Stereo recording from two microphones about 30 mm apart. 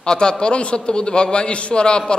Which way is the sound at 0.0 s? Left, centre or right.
Left.